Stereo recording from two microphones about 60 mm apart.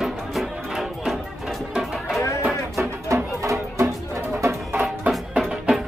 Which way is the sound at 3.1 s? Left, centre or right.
Right.